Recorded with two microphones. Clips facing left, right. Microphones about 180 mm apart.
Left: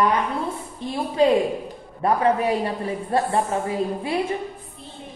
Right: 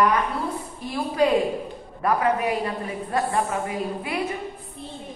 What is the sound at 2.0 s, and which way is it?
A woman's voice, 30° left (ahead or behind).